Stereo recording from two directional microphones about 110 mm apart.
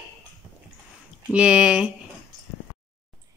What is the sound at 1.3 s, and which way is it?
Speech, 10° right (ahead or behind).